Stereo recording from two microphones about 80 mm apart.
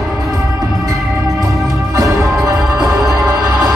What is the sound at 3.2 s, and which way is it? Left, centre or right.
Music, right.